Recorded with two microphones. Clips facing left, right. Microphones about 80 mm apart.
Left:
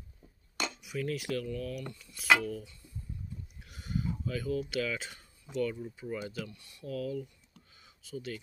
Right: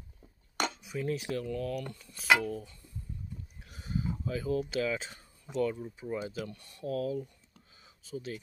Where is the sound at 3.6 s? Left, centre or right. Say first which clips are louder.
Right 1 dB; right.